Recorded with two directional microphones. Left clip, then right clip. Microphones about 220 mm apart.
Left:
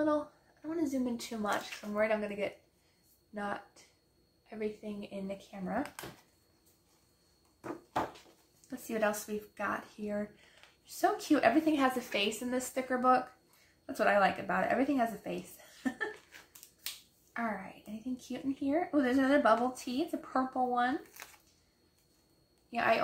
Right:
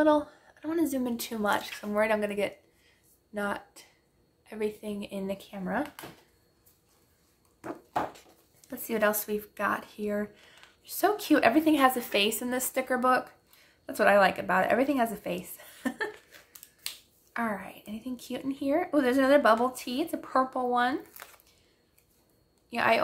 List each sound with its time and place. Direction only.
0.0 s speech: 35° right (ahead or behind)
7.6 s a sound: 10° right (ahead or behind)
8.5 s speech: 40° right (ahead or behind)
17.3 s speech: 40° right (ahead or behind)
22.7 s speech: 40° right (ahead or behind)